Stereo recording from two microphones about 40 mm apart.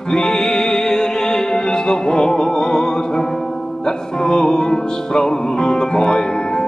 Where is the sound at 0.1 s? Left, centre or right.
Centre.